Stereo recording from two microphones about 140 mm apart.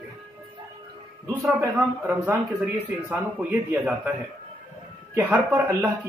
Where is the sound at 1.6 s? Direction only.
10° right (ahead or behind).